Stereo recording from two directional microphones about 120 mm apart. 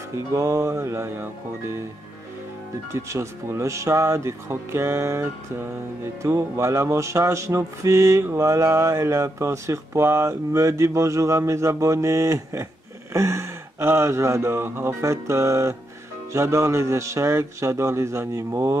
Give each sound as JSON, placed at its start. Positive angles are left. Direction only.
{"t": 0.1, "sound": "music", "side_deg": -25}
{"t": 2.9, "sound": "music", "side_deg": -25}